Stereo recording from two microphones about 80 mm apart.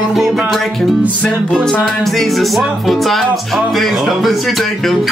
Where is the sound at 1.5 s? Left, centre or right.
Centre.